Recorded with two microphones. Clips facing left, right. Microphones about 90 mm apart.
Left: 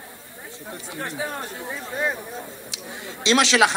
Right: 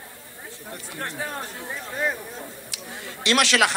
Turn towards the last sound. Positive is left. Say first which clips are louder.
# left 3 dB
turn(degrees=20)  # may be behind; listen again after turning